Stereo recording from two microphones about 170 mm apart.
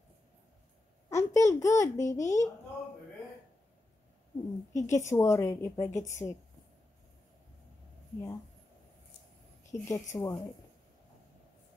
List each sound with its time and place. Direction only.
1.1 s babbling: 15° left (ahead or behind)
2.1 s a woman's voice: 15° left (ahead or behind)
4.7 s a woman's voice: 20° left (ahead or behind)
9.7 s a woman's voice: 20° left (ahead or behind)